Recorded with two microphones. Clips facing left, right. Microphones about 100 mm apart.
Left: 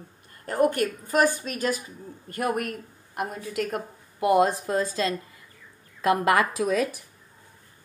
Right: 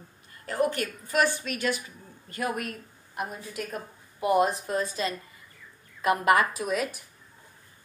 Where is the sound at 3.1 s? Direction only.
75° left (ahead or behind); by 6.6 s 90° left.